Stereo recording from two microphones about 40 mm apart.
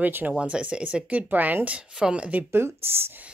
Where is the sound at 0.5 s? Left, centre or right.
Centre.